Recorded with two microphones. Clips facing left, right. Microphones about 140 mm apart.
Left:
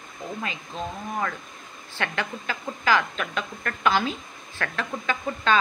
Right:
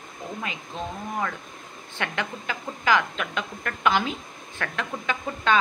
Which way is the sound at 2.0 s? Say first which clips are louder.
Left 1 dB; 20° right (ahead or behind).